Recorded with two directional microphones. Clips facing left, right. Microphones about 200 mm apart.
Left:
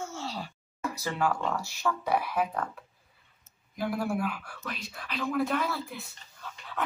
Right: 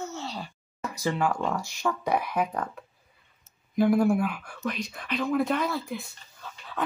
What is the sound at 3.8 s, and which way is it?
Speech, 50° right (ahead or behind).